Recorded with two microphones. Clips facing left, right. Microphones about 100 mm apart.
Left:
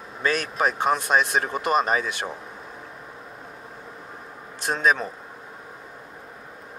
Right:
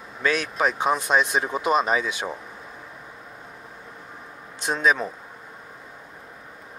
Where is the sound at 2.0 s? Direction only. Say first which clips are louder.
Right 1 dB; 50° left (ahead or behind).